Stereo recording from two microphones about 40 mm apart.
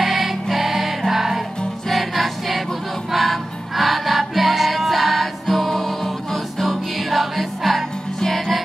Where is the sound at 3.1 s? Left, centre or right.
Centre.